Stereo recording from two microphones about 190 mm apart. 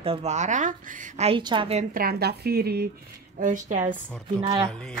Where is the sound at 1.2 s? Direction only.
25° right (ahead or behind).